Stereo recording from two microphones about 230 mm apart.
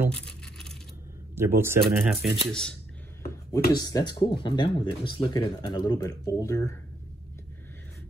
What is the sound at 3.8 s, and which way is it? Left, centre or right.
Speech, centre.